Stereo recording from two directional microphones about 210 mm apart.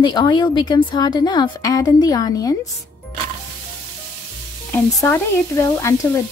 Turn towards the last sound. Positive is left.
turn(degrees=10)  # may be behind; listen again after turning